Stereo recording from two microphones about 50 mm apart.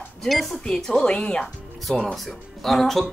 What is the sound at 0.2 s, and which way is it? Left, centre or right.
Speech, centre.